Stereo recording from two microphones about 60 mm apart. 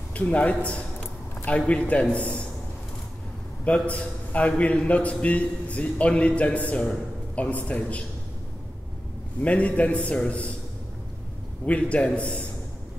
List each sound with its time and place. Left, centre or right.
0.1 s a man's voice: left
3.6 s a man's voice: left
9.4 s a man's voice: left
11.6 s a man's voice: left